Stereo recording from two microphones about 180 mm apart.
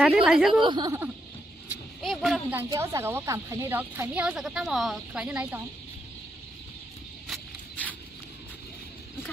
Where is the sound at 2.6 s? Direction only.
15° right (ahead or behind).